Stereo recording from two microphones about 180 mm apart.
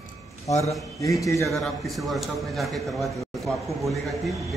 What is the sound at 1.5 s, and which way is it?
A man's voice, centre (ahead or behind).